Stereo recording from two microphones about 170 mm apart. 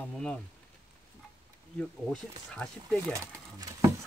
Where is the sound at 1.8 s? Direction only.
5° left (ahead or behind).